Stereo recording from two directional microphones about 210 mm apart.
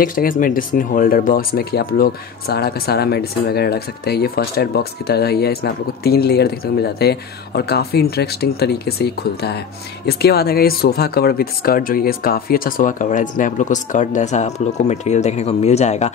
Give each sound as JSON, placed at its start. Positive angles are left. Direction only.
{"t": 0.0, "sound": "speech", "side_deg": 40}